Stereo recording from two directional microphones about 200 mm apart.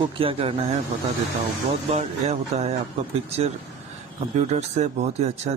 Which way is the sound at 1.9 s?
30° right (ahead or behind).